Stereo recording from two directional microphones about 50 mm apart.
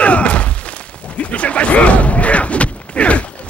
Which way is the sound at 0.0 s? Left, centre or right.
Left.